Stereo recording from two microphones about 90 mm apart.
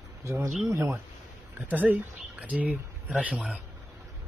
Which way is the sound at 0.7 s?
30° right (ahead or behind).